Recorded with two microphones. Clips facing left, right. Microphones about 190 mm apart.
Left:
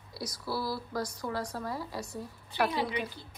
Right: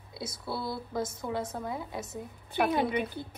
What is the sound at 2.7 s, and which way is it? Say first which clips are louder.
Speech: right 4 dB; 55° right (ahead or behind).